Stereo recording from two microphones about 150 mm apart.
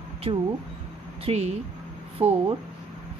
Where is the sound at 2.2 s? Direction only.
15° right (ahead or behind).